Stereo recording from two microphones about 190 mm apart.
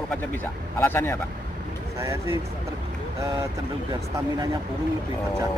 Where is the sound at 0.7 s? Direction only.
10° left (ahead or behind).